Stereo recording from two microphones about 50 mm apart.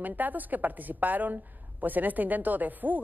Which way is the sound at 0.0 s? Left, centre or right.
Right.